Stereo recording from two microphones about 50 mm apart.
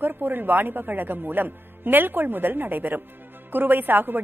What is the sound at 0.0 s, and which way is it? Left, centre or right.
A woman's voice, right.